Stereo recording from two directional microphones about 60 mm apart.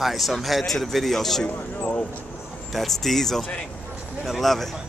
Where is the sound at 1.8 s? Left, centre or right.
Left.